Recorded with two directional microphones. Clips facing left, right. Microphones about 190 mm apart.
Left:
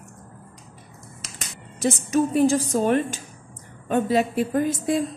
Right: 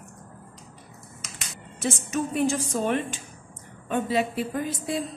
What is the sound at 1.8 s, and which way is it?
A woman's voice, 35° left (ahead or behind).